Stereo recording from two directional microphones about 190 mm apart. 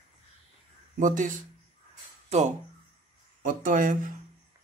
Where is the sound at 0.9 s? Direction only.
45° right (ahead or behind).